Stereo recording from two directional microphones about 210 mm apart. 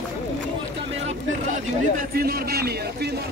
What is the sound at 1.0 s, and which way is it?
A man's voice, 40° right (ahead or behind).